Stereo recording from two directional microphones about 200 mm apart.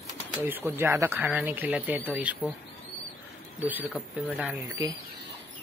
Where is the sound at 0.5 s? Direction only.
10° right (ahead or behind).